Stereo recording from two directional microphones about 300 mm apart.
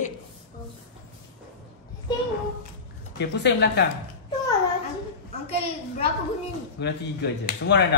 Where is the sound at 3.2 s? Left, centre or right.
Left.